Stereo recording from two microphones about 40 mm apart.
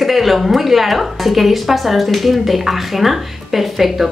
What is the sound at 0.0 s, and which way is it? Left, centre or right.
A woman's voice, centre.